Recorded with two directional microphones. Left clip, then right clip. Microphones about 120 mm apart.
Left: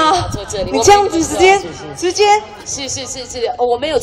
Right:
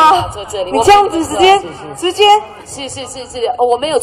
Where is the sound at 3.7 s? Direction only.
30° left (ahead or behind).